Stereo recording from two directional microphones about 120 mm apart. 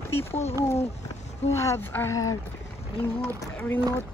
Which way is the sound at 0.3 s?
60° left (ahead or behind).